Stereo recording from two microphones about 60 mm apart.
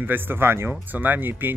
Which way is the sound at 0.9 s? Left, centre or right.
Right.